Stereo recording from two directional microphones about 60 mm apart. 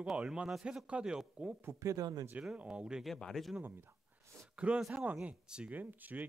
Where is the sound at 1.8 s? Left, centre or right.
Right.